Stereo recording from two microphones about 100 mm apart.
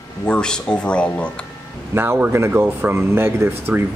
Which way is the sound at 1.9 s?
25° right (ahead or behind).